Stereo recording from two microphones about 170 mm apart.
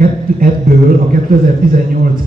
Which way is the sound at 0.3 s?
60° right (ahead or behind).